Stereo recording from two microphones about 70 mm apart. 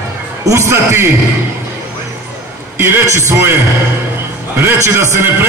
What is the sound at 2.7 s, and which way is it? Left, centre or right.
Speech, right.